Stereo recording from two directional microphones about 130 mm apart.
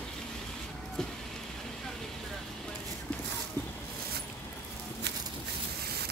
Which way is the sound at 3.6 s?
20° left (ahead or behind).